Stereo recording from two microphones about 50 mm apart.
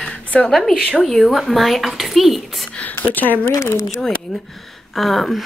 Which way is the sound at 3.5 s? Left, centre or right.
Left.